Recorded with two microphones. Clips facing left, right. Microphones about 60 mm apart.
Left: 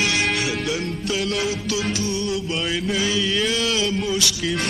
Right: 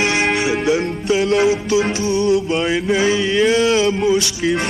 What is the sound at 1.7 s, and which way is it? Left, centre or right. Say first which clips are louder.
Music: right 7 dB; right.